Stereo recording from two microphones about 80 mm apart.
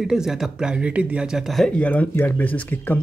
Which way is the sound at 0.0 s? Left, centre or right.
Centre.